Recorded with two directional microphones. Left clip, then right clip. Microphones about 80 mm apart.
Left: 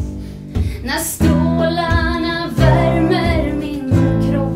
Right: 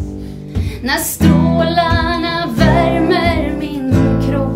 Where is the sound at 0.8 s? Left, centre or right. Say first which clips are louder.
Right 3 dB; right.